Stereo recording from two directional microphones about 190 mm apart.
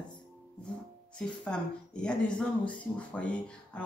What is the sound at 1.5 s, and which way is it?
Speech, 5° left (ahead or behind).